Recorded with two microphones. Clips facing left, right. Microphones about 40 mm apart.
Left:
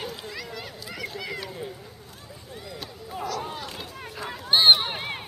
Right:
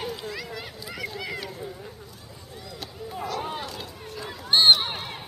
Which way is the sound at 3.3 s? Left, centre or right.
Right.